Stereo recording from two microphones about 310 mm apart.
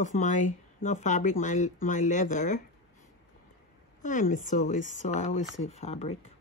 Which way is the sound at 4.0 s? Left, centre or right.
Left.